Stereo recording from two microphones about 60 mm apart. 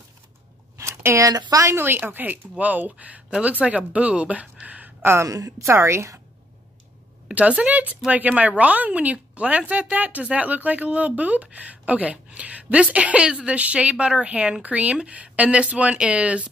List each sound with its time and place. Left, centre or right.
0.7 s a sound: right
1.2 s speech: right
1.7 s speech: right
3.3 s speech: centre
5.0 s a woman's voice: right
5.3 s speech: right
5.7 s a woman's voice: right
7.3 s speech: right